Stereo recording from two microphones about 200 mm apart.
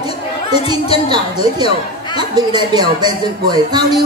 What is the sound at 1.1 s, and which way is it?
Speech, 20° right (ahead or behind).